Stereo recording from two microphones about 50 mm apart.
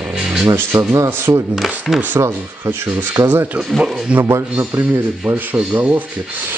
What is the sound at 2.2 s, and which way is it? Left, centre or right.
Speech, right.